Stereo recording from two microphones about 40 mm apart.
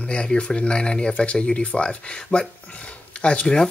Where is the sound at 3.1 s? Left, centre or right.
Left.